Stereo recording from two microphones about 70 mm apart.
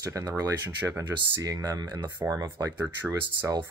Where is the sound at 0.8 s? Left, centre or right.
Centre.